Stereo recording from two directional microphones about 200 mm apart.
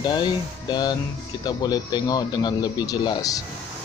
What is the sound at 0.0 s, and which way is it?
Speech, 20° left (ahead or behind).